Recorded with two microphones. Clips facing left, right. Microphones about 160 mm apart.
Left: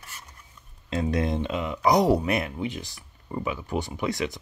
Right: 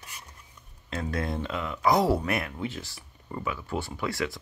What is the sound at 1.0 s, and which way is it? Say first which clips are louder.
Speech: left 5 dB; 20° left (ahead or behind).